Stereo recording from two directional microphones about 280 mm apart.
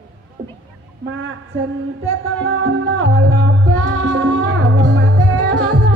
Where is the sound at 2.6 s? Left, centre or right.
Right.